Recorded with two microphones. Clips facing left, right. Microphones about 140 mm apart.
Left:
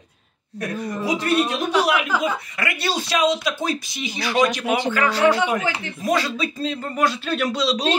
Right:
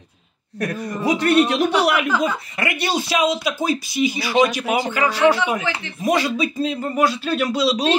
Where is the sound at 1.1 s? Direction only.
65° right (ahead or behind).